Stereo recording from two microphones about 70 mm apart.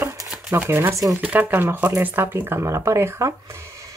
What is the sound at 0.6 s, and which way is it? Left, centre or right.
Speech, right.